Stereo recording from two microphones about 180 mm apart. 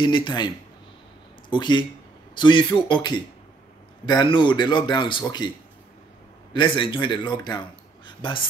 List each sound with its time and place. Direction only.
0.0 s speech: 25° left (ahead or behind)
1.5 s speech: 25° left (ahead or behind)
6.5 s speech: 25° left (ahead or behind)